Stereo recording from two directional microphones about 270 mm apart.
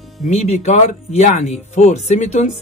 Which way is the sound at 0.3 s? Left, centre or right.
Left.